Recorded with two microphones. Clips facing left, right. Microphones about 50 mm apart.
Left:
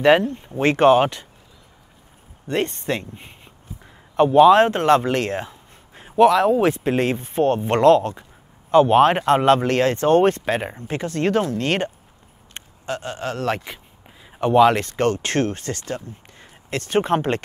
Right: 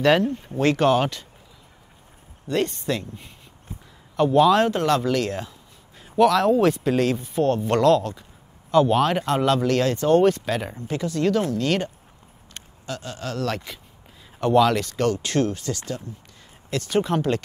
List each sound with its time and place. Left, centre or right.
0.0 s speech: left
2.4 s speech: left
3.8 s a sound: left
6.2 s speech: centre
6.8 s speech: left